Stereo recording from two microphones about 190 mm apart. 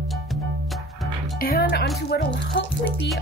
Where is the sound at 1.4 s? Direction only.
55° left (ahead or behind).